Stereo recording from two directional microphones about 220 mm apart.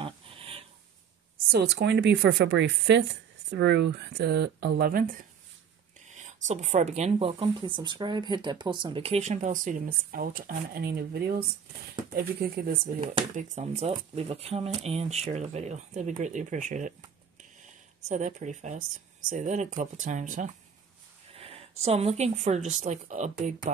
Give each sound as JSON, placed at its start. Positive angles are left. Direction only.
{"t": 0.0, "sound": "a sound", "side_deg": -25}
{"t": 1.5, "sound": "speech", "side_deg": -50}
{"t": 5.9, "sound": "speech", "side_deg": -35}
{"t": 13.0, "sound": "speech", "side_deg": -25}
{"t": 18.0, "sound": "speech", "side_deg": -35}